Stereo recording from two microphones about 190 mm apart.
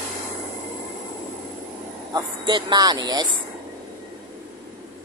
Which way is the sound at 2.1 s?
25° right (ahead or behind).